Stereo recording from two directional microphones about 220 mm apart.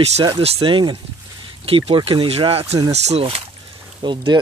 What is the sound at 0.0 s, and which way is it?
Speech, 30° right (ahead or behind).